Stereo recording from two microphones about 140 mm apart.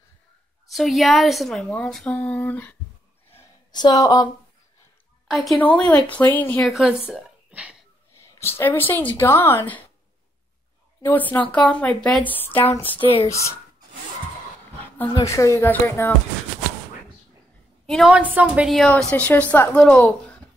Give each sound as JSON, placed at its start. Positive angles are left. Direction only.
{"t": 0.7, "sound": "a woman's voice", "side_deg": 0}
{"t": 3.7, "sound": "speech", "side_deg": 30}
{"t": 5.3, "sound": "a woman's voice", "side_deg": 0}
{"t": 6.6, "sound": "a woman's voice", "side_deg": -5}
{"t": 8.4, "sound": "speech", "side_deg": 15}
{"t": 11.0, "sound": "speech", "side_deg": 15}
{"t": 15.2, "sound": "speech", "side_deg": 20}
{"t": 17.8, "sound": "a woman's voice", "side_deg": 0}
{"t": 18.8, "sound": "speech", "side_deg": 5}